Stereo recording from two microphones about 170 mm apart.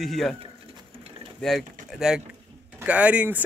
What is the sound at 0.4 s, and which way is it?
Sewing machine, 35° right (ahead or behind).